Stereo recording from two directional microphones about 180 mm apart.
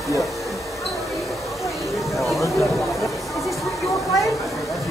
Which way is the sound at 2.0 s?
Centre (ahead or behind).